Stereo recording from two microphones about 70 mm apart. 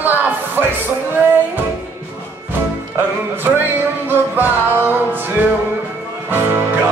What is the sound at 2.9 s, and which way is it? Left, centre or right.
Music, right.